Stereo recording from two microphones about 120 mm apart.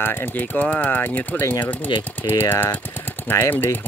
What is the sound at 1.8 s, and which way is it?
Speech, 40° left (ahead or behind).